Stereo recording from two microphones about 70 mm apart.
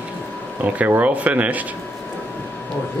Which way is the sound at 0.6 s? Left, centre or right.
Right.